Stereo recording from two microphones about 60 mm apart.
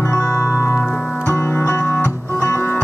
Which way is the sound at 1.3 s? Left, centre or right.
Left.